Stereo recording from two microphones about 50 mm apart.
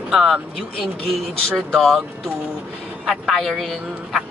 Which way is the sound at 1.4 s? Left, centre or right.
Centre.